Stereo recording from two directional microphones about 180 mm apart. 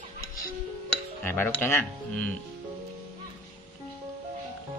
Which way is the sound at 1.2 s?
10° left (ahead or behind).